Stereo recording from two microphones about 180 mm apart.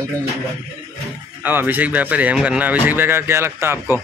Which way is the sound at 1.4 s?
10° right (ahead or behind).